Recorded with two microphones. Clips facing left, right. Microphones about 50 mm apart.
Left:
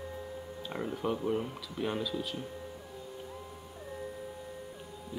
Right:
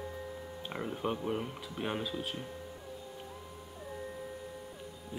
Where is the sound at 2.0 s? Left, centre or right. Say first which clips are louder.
Left 2 dB; right.